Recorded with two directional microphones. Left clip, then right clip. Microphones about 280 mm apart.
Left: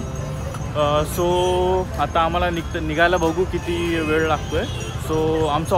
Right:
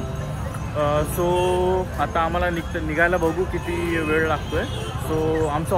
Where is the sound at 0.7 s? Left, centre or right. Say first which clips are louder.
Left 2 dB; centre.